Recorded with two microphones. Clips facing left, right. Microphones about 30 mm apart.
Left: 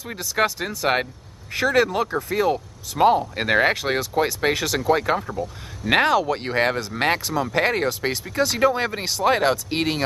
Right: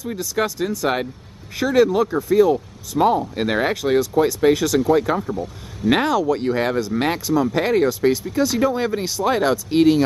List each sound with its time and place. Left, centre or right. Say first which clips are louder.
0.2 s speech: even; centre